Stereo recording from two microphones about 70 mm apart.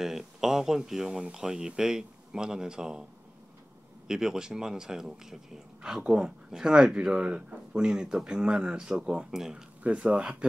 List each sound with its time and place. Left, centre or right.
0.0 s speech: centre
4.1 s speech: centre